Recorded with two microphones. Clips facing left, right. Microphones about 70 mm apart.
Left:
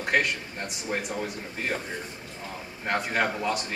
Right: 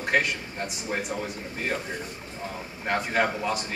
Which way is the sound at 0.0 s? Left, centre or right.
Centre.